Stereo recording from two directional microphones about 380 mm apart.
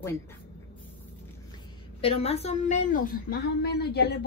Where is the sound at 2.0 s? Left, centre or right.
Centre.